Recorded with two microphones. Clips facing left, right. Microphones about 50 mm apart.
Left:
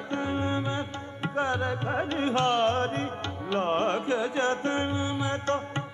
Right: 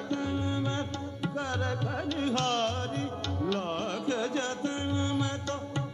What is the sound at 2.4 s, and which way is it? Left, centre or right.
Music, centre.